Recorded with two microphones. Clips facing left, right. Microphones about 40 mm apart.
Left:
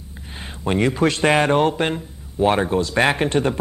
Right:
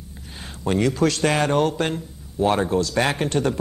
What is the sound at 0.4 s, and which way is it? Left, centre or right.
A man's voice, left.